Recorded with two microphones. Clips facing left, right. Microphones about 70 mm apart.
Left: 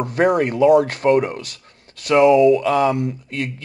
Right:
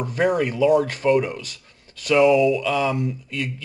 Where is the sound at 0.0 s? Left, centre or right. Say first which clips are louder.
Left 4 dB; left.